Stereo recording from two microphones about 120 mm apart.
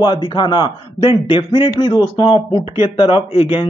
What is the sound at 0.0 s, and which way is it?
A man's voice, 40° left (ahead or behind).